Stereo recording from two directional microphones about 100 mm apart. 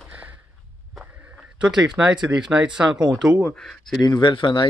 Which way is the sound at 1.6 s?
10° right (ahead or behind).